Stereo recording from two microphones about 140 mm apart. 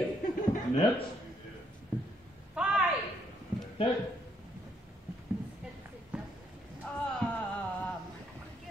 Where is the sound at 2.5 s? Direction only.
5° right (ahead or behind).